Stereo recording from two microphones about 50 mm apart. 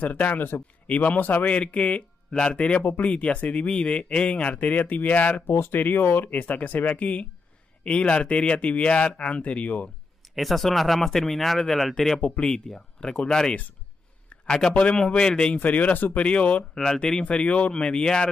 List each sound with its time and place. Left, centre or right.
0.0 s speech: left
1.5 s speech: left
5.5 s speech: left
10.3 s speech: centre
12.2 s speech: left
16.7 s speech: centre
17.2 s speech: left